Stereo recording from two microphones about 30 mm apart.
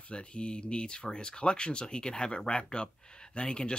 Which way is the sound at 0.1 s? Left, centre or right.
Left.